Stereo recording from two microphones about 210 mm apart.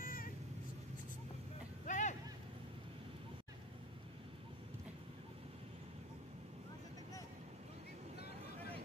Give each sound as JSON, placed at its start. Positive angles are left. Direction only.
{"t": 0.0, "sound": "vehicle", "side_deg": 40}
{"t": 1.9, "sound": "vehicle", "side_deg": 35}